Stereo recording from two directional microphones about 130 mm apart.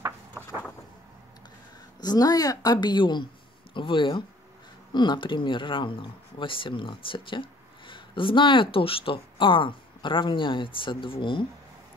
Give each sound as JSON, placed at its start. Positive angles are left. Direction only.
{"t": 2.0, "sound": "speech", "side_deg": 30}